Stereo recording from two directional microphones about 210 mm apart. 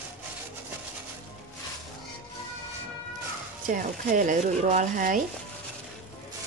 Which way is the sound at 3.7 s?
40° right (ahead or behind).